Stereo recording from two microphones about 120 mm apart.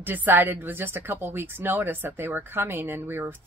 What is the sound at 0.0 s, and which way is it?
Speech, 15° right (ahead or behind).